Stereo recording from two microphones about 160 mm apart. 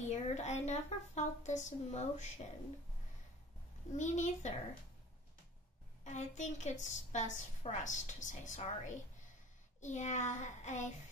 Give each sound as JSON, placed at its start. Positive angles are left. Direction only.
{"t": 0.0, "sound": "a woman's voice", "side_deg": 45}
{"t": 3.9, "sound": "a woman's voice", "side_deg": 50}
{"t": 6.0, "sound": "a woman's voice", "side_deg": 50}